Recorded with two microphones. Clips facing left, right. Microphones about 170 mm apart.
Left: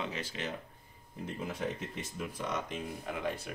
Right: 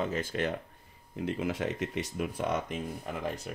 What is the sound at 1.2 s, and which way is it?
Speech, 90° right.